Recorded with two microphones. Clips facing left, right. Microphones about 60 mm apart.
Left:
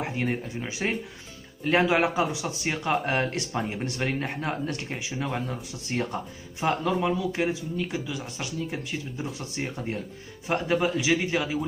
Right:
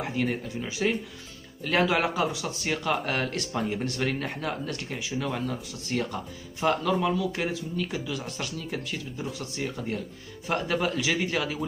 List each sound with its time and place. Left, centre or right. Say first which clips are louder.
0.0 s speech: even; left
10.4 s speech: left 2 dB; centre